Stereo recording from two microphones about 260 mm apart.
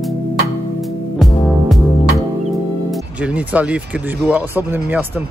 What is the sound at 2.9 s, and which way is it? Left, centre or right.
Speech, centre.